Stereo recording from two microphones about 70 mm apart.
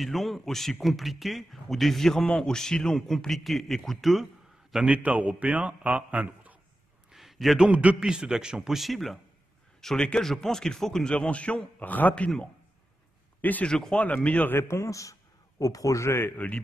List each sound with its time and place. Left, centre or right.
0.0 s speech: centre
4.8 s a man's voice: centre
7.1 s a sound: centre
7.6 s a man's voice: centre; by 12.3 s left
13.4 s speech: left
13.7 s a man's voice: centre
13.9 s speech: left
14.5 s speech: left